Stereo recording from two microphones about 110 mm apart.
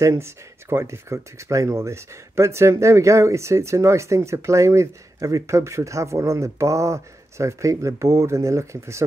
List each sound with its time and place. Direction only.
0.0 s speech: 25° right (ahead or behind)